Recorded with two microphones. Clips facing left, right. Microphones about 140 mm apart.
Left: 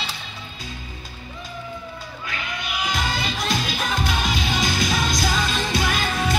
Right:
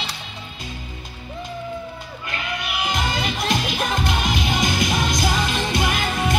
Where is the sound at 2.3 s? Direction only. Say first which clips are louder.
Right 3 dB; 65° right (ahead or behind).